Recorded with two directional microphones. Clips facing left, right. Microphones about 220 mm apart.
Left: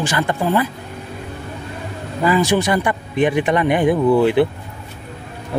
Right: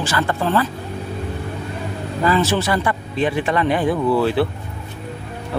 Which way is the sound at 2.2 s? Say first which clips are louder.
Left 2 dB; 15° left (ahead or behind).